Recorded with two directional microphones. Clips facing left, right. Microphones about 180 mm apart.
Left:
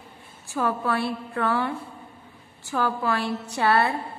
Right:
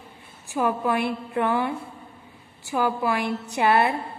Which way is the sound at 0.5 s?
15° right (ahead or behind).